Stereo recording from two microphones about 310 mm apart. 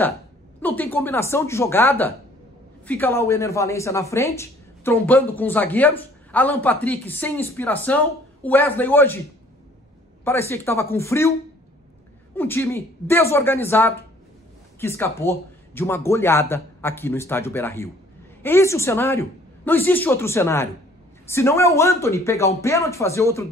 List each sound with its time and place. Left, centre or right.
0.6 s a man's voice: centre
10.2 s a man's voice: centre
12.4 s a man's voice: centre